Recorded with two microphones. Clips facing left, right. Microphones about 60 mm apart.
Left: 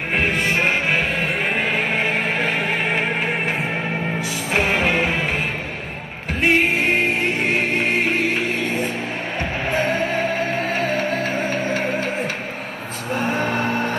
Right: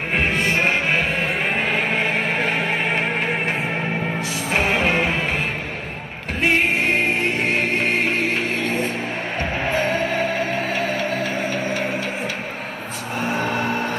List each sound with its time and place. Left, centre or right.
0.1 s music: centre
6.4 s music: centre
9.8 s music: left
13.2 s vehicle: left